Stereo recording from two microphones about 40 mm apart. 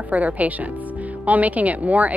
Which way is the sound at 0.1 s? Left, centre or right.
Right.